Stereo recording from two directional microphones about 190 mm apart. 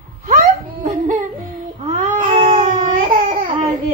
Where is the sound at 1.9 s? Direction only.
40° right (ahead or behind).